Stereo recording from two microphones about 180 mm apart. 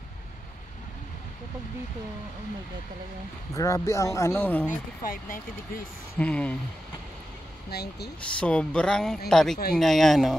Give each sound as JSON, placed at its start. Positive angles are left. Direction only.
{"t": 3.5, "sound": "speech", "side_deg": 15}
{"t": 4.6, "sound": "speech", "side_deg": 50}
{"t": 6.1, "sound": "speech", "side_deg": 5}
{"t": 7.7, "sound": "speech", "side_deg": 65}
{"t": 8.2, "sound": "speech", "side_deg": 5}